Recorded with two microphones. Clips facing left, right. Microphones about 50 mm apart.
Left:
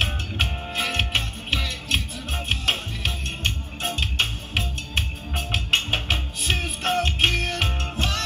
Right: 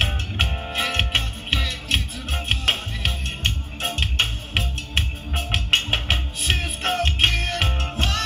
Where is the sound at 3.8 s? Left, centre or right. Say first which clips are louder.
Right 1 dB; right.